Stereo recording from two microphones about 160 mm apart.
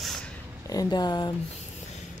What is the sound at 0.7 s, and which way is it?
Speech, 25° left (ahead or behind).